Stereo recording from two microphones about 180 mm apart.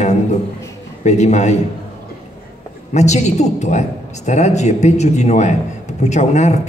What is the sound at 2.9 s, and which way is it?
A man's voice, 40° left (ahead or behind).